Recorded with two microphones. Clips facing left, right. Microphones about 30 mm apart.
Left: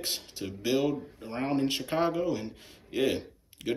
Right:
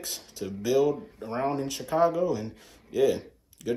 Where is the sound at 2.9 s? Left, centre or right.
Left.